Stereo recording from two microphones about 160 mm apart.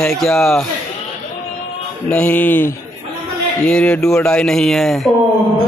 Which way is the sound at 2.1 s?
10° left (ahead or behind).